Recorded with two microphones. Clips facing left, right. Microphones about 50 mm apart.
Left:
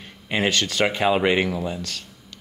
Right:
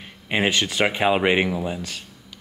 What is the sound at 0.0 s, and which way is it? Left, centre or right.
Speech, centre.